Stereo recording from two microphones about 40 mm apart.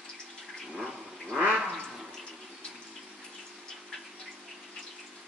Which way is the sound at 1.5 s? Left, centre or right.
Centre.